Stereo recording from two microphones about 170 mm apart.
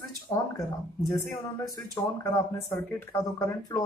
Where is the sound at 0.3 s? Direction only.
25° left (ahead or behind).